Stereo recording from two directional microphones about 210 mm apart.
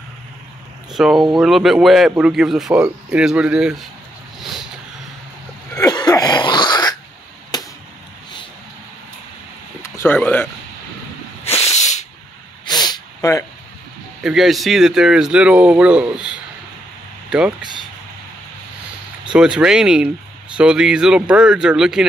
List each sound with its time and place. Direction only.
0.9 s a man's voice: centre (ahead or behind)
4.4 s vehicle: centre (ahead or behind)
5.8 s cough: 20° left (ahead or behind)
7.5 s arrow: 20° left (ahead or behind)
9.8 s a sound: 10° left (ahead or behind)
11.4 s hiss: 30° left (ahead or behind)
12.8 s snort: 15° left (ahead or behind)
14.2 s a man's voice: centre (ahead or behind)
19.3 s a man's voice: 5° right (ahead or behind)